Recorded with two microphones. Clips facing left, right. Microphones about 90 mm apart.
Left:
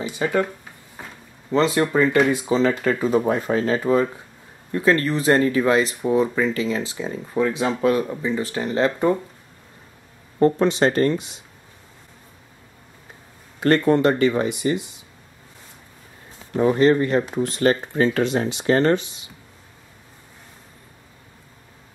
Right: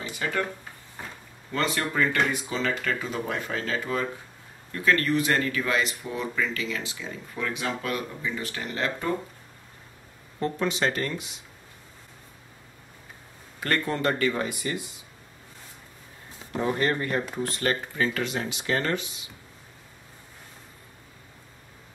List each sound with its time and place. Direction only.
0.1 s speech: 20° left (ahead or behind)
1.5 s speech: 20° left (ahead or behind)
10.4 s speech: 35° left (ahead or behind)
13.6 s speech: 25° left (ahead or behind)
16.5 s speech: 20° left (ahead or behind)